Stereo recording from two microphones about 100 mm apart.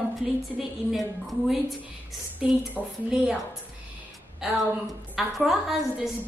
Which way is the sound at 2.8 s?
Centre (ahead or behind).